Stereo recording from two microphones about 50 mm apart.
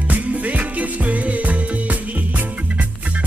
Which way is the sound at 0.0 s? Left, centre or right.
Right.